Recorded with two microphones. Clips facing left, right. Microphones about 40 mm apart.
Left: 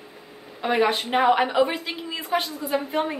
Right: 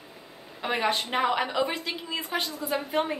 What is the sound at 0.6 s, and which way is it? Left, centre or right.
A woman's voice, centre.